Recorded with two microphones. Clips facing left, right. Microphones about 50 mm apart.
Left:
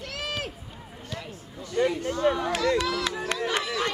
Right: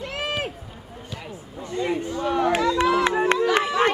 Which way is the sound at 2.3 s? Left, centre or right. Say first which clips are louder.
Right 5 dB; right.